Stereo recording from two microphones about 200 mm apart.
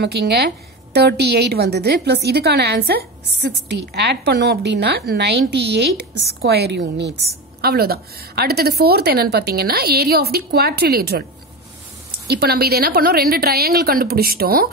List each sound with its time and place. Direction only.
0.0 s a woman's voice: 55° right (ahead or behind)
12.3 s a woman's voice: 50° right (ahead or behind)